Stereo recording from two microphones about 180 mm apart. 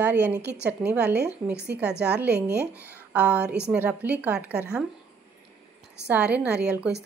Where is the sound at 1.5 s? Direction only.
70° right (ahead or behind).